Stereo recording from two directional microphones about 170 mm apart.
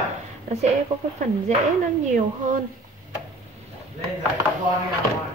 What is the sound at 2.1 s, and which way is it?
Speech, 50° right (ahead or behind).